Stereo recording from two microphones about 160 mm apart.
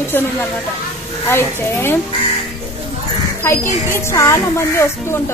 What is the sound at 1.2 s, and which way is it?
Speech, 15° left (ahead or behind).